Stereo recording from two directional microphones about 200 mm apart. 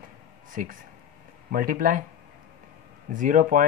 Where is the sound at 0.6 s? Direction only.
40° right (ahead or behind).